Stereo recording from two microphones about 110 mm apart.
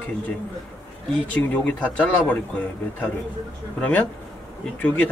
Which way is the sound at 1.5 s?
15° left (ahead or behind).